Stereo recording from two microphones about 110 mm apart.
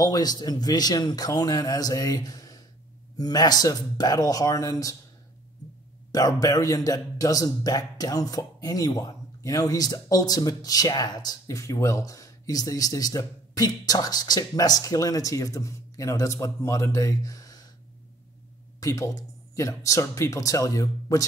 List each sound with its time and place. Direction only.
0.0 s a man's voice: 35° left (ahead or behind)
6.1 s a man's voice: 35° left (ahead or behind)
18.8 s speech: 30° left (ahead or behind)